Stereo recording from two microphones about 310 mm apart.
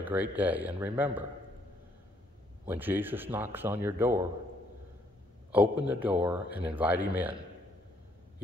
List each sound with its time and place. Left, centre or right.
0.0 s speech: centre
2.6 s speech: centre
5.5 s speech: centre